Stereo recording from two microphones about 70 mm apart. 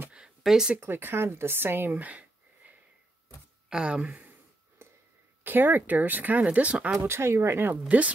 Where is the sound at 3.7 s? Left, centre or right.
Centre.